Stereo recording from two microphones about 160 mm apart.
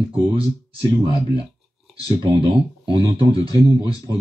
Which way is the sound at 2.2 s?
30° right (ahead or behind).